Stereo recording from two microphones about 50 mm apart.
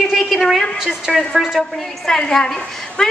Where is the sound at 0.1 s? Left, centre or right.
Centre.